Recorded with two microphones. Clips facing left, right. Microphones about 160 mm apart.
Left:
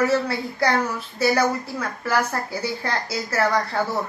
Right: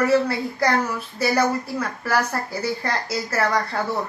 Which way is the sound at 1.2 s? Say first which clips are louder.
Even; 5° right (ahead or behind).